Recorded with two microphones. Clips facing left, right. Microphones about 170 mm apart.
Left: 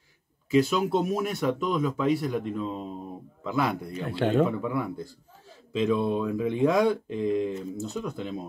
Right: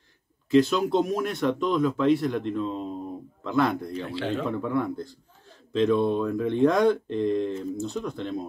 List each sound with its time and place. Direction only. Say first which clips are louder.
0.5 s speech: right 2 dB; 5° left (ahead or behind)
4.1 s a man's voice: left 7 dB; 50° left (ahead or behind)
4.5 s speech: right 2 dB; 5° left (ahead or behind)